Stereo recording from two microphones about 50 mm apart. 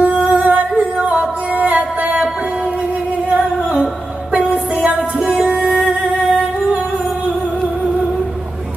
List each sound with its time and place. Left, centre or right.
0.0 s music: right
4.8 s music: right
5.4 s music: centre